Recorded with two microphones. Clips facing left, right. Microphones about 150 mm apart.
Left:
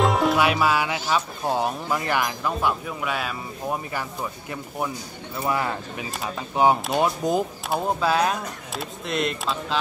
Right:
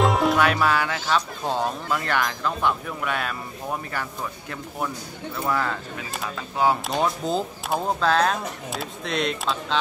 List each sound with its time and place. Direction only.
0.0 s speech: centre (ahead or behind)